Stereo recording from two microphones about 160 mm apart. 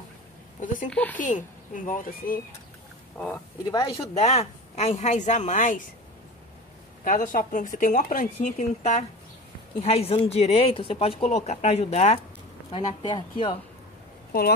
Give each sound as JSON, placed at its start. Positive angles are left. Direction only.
{"t": 0.6, "sound": "a sound", "side_deg": 55}
{"t": 0.8, "sound": "speech", "side_deg": 10}
{"t": 1.2, "sound": "speech", "side_deg": 55}
{"t": 4.0, "sound": "speech", "side_deg": 45}
{"t": 7.1, "sound": "speech", "side_deg": 55}